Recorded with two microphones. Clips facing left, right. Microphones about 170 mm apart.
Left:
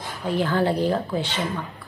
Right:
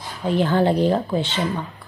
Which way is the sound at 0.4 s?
25° right (ahead or behind).